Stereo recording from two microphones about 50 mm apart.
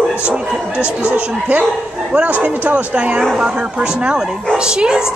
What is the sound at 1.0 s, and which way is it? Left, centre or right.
Speech, right.